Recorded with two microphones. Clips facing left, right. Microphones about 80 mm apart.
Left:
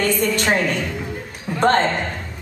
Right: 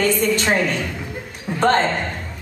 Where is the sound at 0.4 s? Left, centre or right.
Centre.